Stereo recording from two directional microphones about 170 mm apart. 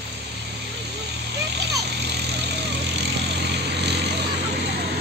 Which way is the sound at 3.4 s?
80° right.